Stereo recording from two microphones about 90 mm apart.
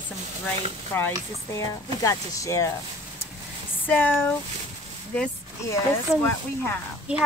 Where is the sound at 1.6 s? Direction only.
40° left (ahead or behind).